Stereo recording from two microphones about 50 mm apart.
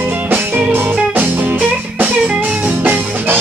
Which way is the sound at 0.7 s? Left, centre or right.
Right.